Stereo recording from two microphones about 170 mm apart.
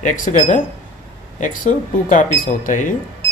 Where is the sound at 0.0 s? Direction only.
50° left (ahead or behind).